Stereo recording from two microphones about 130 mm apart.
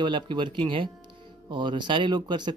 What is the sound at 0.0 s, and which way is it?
Speech, 40° right (ahead or behind).